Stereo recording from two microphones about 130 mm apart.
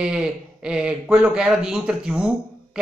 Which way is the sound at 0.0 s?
5° right (ahead or behind).